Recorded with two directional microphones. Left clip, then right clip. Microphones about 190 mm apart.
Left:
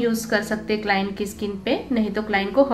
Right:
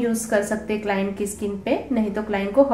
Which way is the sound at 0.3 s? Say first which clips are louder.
Right 1 dB; 5° left (ahead or behind).